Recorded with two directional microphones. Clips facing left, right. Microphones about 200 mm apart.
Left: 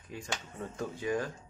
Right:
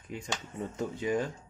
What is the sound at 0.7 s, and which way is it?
Speech, 20° right (ahead or behind).